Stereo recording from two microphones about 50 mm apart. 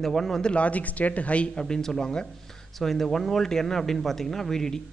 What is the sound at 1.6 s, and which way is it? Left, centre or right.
Speech, centre.